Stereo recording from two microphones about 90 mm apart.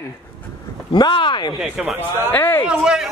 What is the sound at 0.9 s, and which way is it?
Speech, 65° left (ahead or behind).